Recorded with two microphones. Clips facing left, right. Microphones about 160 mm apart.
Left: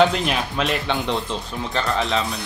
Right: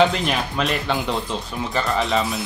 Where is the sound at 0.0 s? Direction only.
Centre (ahead or behind).